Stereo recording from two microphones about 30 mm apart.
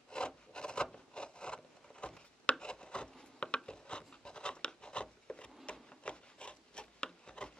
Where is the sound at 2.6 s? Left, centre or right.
Left.